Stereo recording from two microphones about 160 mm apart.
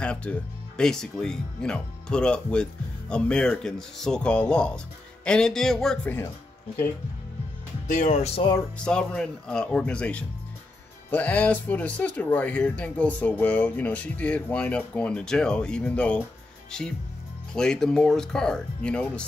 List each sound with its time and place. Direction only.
0.0 s speech: 5° left (ahead or behind)
7.8 s speech: 50° left (ahead or behind)
8.4 s speech: 25° left (ahead or behind)
8.7 s speech: 5° left (ahead or behind)